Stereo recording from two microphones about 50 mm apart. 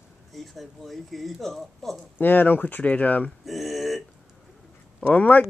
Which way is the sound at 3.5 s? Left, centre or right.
Centre.